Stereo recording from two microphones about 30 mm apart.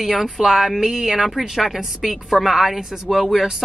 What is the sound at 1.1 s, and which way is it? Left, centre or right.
A woman's voice, centre.